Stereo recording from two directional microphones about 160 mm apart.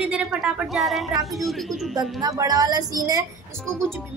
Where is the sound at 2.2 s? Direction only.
20° right (ahead or behind).